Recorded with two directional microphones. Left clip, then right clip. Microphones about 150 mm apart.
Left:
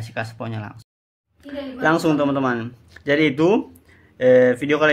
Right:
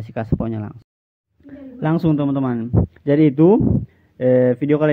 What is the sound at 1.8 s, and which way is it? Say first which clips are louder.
Speech: left 2 dB; 45° right (ahead or behind).